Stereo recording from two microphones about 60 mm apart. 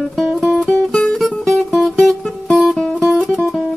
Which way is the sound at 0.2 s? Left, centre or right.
Centre.